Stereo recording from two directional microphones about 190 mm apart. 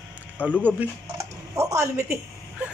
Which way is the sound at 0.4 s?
10° right (ahead or behind).